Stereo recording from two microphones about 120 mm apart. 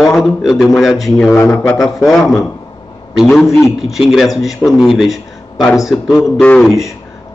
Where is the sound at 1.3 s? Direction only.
20° left (ahead or behind).